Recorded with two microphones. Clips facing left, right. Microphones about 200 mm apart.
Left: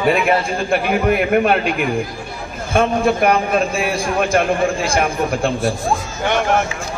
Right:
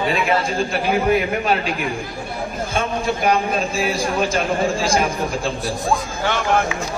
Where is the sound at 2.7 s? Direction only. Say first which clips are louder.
Left 8 dB; 55° left (ahead or behind).